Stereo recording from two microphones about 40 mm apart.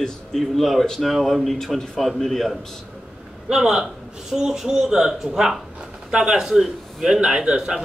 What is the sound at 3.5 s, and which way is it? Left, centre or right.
A man's voice, centre.